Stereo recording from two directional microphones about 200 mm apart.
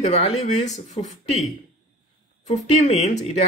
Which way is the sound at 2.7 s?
35° left (ahead or behind).